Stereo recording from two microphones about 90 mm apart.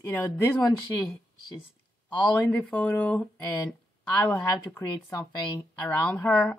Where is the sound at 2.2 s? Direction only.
15° left (ahead or behind).